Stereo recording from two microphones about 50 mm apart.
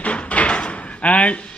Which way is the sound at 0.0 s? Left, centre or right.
Left.